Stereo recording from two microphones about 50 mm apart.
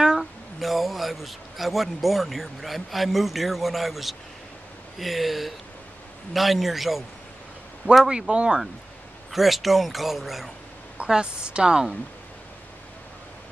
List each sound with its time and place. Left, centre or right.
0.2 s a man's voice: centre
8.3 s speech: right
9.3 s speech: centre
11.1 s speech: centre